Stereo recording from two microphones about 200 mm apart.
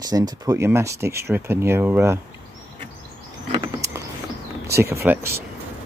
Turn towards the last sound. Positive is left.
turn(degrees=-10)  # may be behind; listen again after turning